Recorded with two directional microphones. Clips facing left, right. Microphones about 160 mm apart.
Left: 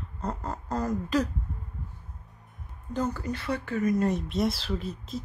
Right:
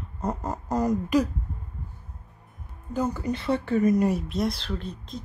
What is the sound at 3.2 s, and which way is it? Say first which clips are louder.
Speech: right 5 dB; 20° right (ahead or behind).